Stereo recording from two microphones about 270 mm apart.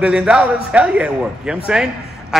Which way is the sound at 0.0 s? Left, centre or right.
Centre.